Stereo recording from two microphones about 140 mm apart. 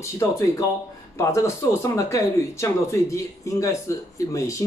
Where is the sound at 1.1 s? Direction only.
20° left (ahead or behind).